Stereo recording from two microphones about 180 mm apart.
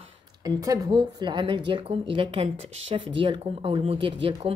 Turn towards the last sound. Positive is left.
turn(degrees=-30)  # may be behind; listen again after turning